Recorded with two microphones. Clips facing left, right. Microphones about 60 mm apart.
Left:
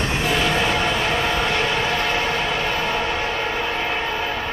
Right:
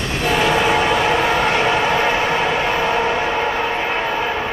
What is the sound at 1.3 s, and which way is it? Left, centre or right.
Vehicle, right.